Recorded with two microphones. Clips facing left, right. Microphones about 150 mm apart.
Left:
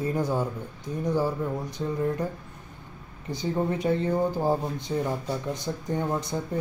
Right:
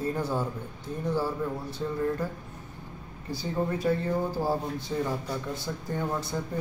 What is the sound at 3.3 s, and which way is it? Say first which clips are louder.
Speech: left 3 dB; 20° left (ahead or behind).